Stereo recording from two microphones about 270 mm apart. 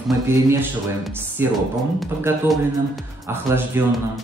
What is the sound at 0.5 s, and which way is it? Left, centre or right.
Speech, centre.